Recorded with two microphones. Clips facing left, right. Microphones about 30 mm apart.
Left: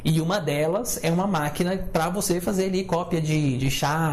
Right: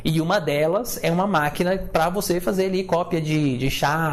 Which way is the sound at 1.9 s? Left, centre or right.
Right.